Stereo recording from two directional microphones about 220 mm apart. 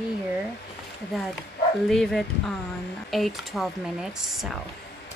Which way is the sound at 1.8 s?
Centre (ahead or behind).